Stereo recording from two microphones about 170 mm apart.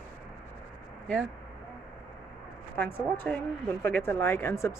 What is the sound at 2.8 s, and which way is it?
Speech, 10° left (ahead or behind).